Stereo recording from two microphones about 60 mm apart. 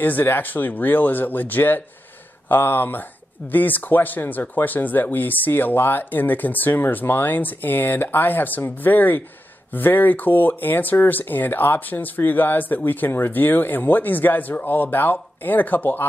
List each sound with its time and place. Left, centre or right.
0.0 s speech: left